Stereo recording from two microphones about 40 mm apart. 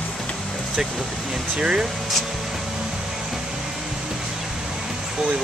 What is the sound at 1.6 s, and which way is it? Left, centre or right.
Speech, centre.